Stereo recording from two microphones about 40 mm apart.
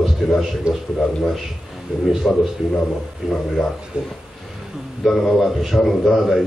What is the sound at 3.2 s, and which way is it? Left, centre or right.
Speech, centre.